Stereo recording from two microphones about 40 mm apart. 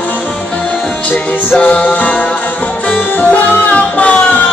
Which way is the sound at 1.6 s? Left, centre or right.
Left.